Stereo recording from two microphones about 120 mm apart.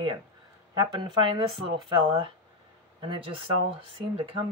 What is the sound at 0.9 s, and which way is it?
Speech, 40° right (ahead or behind).